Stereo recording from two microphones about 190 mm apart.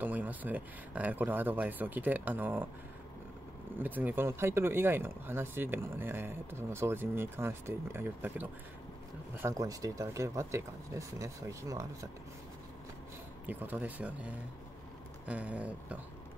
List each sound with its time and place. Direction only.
0.0 s speech: 10° right (ahead or behind)
3.7 s speech: 10° right (ahead or behind)
13.5 s speech: 10° right (ahead or behind)